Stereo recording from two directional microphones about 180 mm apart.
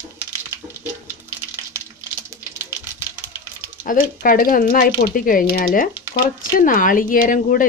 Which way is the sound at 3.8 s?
50° left (ahead or behind).